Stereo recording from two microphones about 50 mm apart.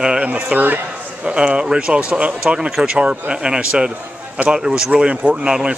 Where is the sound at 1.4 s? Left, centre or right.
Centre.